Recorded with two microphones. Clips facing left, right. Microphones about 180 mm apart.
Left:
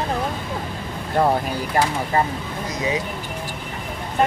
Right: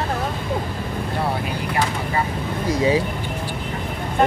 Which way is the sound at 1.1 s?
45° left (ahead or behind).